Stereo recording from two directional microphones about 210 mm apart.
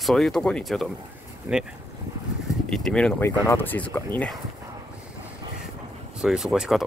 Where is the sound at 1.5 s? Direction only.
10° right (ahead or behind).